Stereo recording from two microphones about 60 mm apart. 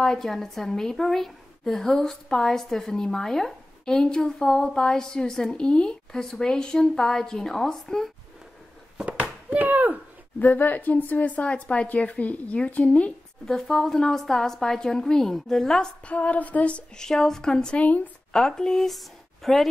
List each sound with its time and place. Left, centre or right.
0.0 s a woman's voice: centre
8.9 s a sound: right
10.4 s a woman's voice: left
13.5 s a woman's voice: centre
16.1 s a woman's voice: left
17.8 s a woman's voice: left
18.3 s speech: centre